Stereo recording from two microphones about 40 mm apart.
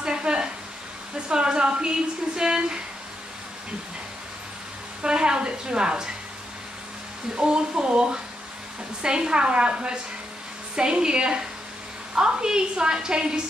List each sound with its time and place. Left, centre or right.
0.0 s a sound: right
1.3 s a woman's voice: right
5.0 s a woman's voice: right
7.3 s a woman's voice: right